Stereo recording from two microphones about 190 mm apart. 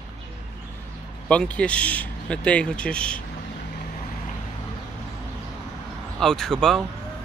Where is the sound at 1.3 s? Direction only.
5° left (ahead or behind).